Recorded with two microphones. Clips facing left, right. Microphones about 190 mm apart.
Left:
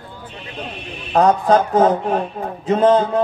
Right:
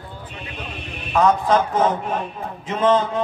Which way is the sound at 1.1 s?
40° left (ahead or behind).